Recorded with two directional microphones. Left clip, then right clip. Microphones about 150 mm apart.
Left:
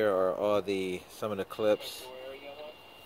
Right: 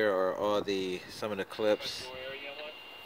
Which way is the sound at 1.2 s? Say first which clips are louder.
Left 1 dB; 10° left (ahead or behind).